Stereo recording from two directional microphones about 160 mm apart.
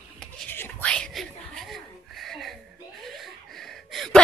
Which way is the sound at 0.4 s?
10° left (ahead or behind).